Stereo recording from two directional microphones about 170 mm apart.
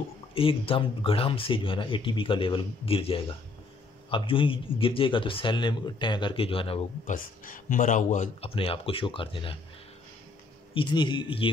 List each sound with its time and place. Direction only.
0.3 s speech: 30° left (ahead or behind)
7.1 s speech: 50° left (ahead or behind)
8.5 s speech: 30° left (ahead or behind)
10.7 s speech: 30° left (ahead or behind)